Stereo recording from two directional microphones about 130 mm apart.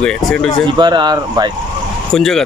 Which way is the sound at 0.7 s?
35° right (ahead or behind).